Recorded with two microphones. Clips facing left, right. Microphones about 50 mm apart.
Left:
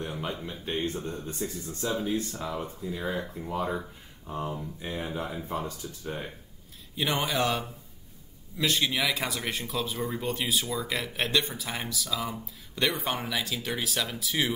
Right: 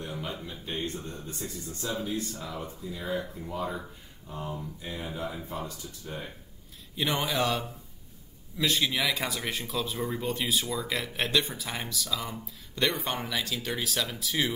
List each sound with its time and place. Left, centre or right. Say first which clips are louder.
0.0 s speech: left 2 dB; left
2.8 s speech: right 1 dB; centre; by 6.1 s left
7.0 s speech: left 1 dB; centre